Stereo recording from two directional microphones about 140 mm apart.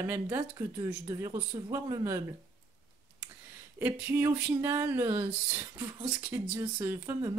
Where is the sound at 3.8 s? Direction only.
15° right (ahead or behind).